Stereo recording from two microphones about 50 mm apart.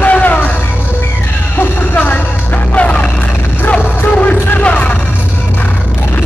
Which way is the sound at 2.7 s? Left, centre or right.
Left.